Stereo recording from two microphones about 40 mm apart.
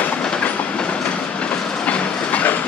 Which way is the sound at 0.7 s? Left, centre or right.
Left.